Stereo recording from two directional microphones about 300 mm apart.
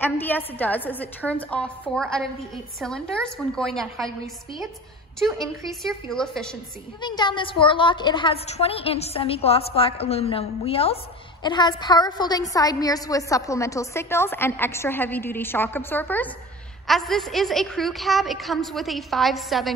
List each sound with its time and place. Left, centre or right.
0.0 s a woman's voice: centre
5.2 s a woman's voice: centre
7.0 s a woman's voice: centre